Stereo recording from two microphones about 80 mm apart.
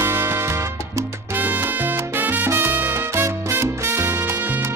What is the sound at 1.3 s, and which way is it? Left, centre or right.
Salsa music, right.